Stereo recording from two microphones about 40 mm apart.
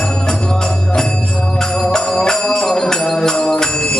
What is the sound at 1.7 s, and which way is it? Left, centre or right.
Music, centre.